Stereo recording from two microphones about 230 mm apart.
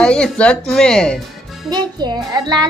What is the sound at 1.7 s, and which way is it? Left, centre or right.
Speech, centre.